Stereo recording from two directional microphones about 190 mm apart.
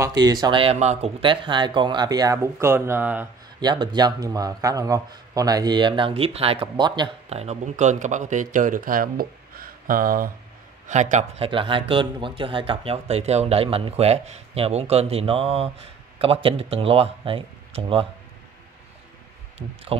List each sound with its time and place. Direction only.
0.0 s speech: 20° right (ahead or behind)
3.5 s speech: 20° right (ahead or behind)
19.9 s speech: 30° right (ahead or behind)